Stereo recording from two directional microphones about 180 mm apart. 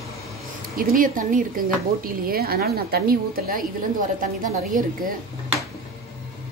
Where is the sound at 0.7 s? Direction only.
50° right (ahead or behind).